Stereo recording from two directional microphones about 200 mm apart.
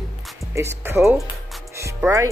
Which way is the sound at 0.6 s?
15° right (ahead or behind).